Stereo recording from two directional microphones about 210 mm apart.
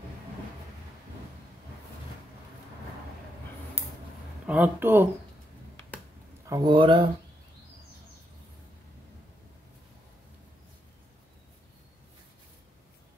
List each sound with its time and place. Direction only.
4.5 s speech: 10° right (ahead or behind)
6.4 s a man's voice: 20° right (ahead or behind)